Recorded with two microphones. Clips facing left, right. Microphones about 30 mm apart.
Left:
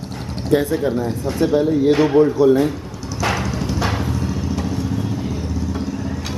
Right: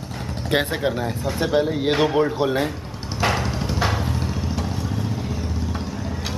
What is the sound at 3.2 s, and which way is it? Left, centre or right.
Clip-clop, right.